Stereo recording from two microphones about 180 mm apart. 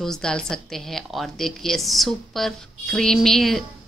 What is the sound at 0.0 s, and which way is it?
A woman's voice, 5° left (ahead or behind).